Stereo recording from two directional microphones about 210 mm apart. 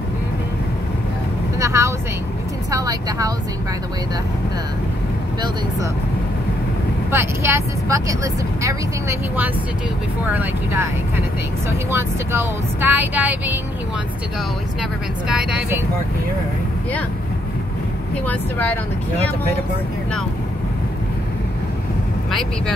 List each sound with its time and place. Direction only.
1.6 s speech: 15° right (ahead or behind)
7.1 s speech: 10° right (ahead or behind)
10.3 s speech: 10° right (ahead or behind)
11.9 s speech: 10° right (ahead or behind)
15.2 s speech: 5° right (ahead or behind)
18.1 s speech: 5° left (ahead or behind)
22.3 s speech: centre (ahead or behind)